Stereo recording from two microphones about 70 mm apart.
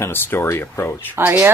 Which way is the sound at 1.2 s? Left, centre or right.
Right.